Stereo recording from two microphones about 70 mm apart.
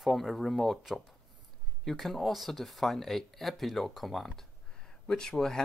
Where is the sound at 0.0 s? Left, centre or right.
Centre.